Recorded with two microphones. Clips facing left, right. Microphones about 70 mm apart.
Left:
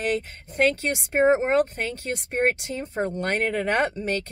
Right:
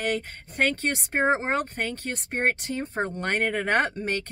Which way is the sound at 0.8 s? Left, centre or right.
Right.